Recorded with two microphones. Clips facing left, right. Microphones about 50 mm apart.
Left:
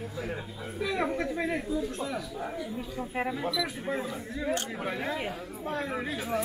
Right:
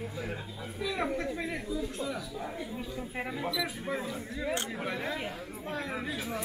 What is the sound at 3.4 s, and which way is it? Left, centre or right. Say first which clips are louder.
Speech: left 2 dB; centre.